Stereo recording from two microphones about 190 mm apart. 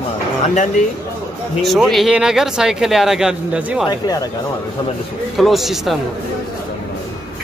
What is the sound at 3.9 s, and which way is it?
Speech, 20° left (ahead or behind).